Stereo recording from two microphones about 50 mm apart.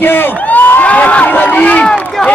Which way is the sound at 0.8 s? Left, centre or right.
Left.